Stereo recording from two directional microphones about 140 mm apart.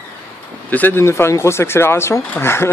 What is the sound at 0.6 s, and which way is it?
Speech, 10° left (ahead or behind).